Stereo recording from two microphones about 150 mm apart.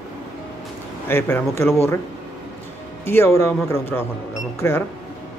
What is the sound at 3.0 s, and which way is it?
Speech, 15° left (ahead or behind).